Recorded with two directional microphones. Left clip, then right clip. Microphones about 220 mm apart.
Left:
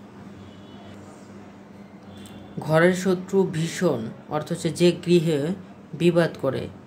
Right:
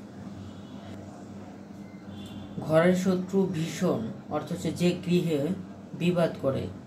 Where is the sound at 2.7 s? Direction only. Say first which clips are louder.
Left 4 dB; 55° left (ahead or behind).